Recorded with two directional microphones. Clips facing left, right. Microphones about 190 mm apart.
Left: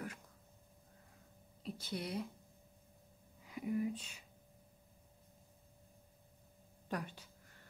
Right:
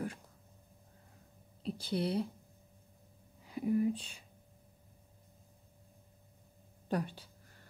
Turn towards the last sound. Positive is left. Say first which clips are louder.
# right 7 dB
turn(degrees=-30)  # may be behind; listen again after turning